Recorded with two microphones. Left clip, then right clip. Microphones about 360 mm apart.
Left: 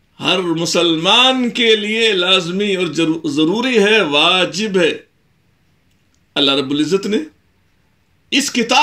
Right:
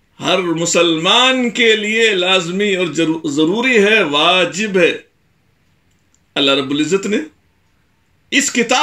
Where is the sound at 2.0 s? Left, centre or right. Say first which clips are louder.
Right 2 dB; centre.